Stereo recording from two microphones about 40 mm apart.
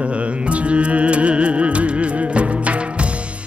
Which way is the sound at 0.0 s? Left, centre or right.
Right.